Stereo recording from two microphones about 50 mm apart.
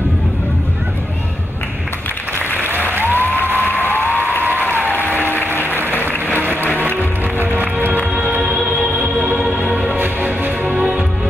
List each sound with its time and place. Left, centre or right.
2.9 s applause: right
3.2 s applause: left
5.2 s a sound: left
6.8 s music: right
9.9 s music: right
10.7 s music: centre